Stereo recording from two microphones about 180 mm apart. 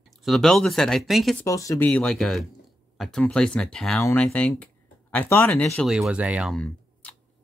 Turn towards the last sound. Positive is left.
turn(degrees=-5)  # may be behind; listen again after turning